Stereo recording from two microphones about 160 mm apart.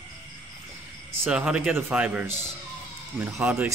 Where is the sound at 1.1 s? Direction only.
10° right (ahead or behind).